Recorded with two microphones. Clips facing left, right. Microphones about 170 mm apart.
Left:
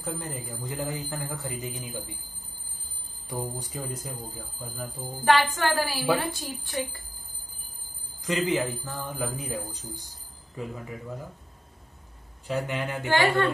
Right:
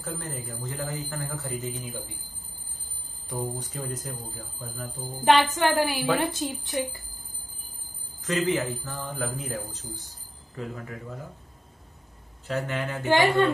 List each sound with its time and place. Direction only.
0.0 s speech: 15° left (ahead or behind)
3.3 s speech: 10° left (ahead or behind)
5.2 s speech: 20° right (ahead or behind)
8.2 s speech: 15° left (ahead or behind)
12.4 s speech: 15° left (ahead or behind)
13.1 s speech: 20° right (ahead or behind)